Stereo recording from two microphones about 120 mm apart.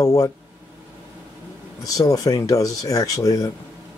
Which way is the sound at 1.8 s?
30° left (ahead or behind).